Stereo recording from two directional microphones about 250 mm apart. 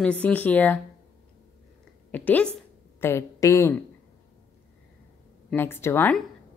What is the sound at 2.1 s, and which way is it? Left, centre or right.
Speech, centre.